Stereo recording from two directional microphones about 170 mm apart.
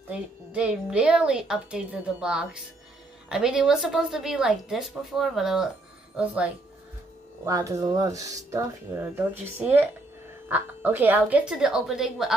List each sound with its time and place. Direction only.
0.1 s a woman's voice: 5° right (ahead or behind)
7.4 s a woman's voice: 20° right (ahead or behind); by 12.4 s centre (ahead or behind)